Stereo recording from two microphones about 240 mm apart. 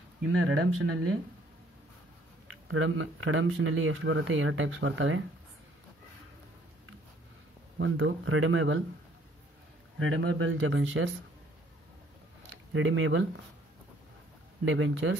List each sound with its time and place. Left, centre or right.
0.3 s speech: right
2.4 s speech: right
7.8 s speech: right
9.9 s speech: right
12.7 s speech: right
14.6 s speech: right